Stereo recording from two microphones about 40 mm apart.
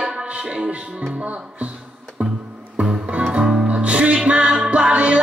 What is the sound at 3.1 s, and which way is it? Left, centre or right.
Music, right.